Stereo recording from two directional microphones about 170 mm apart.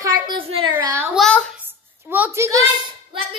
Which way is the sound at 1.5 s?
10° right (ahead or behind).